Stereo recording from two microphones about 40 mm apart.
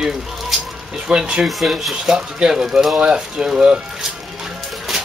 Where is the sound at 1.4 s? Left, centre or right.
Centre.